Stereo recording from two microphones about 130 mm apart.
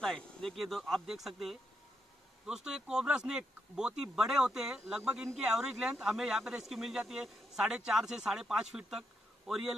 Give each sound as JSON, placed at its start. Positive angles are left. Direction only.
{"t": 0.0, "sound": "speech", "side_deg": 5}